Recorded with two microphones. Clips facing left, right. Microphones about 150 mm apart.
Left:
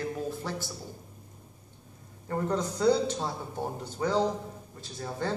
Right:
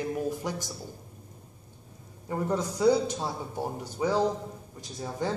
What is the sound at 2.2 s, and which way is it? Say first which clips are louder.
A man's voice: even; 10° right (ahead or behind).